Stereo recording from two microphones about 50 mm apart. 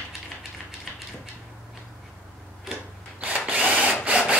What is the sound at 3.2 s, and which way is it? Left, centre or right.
Drill, right.